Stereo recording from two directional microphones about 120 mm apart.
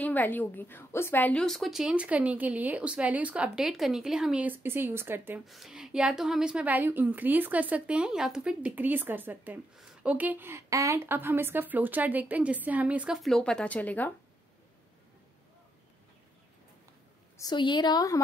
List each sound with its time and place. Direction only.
0.0 s a woman's voice: 15° left (ahead or behind)
1.4 s a woman's voice: centre (ahead or behind); by 5.4 s 20° right (ahead or behind)
5.4 s a woman's voice: centre (ahead or behind)
13.2 s a woman's voice: 5° left (ahead or behind)
17.4 s a woman's voice: 40° left (ahead or behind)